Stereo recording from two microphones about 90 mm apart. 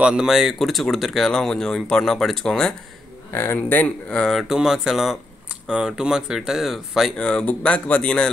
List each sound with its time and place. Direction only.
0.0 s speech: 10° right (ahead or behind); by 2.7 s 5° left (ahead or behind)
3.3 s speech: 25° left (ahead or behind)
4.3 s speech: 5° right (ahead or behind)